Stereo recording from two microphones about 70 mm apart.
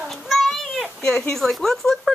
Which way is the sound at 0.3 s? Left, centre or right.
Centre.